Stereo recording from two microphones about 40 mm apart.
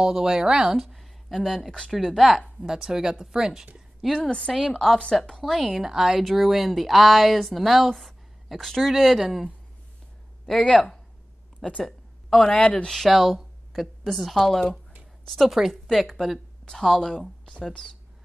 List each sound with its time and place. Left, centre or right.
0.0 s speech: centre
0.7 s speech: centre
2.1 s speech: centre
4.0 s a woman's voice: centre
10.5 s speech: centre
11.8 s a sound: centre
12.4 s speech: left
13.1 s speech: centre
15.9 s speech: centre
17.2 s speech: left
17.6 s a woman's voice: centre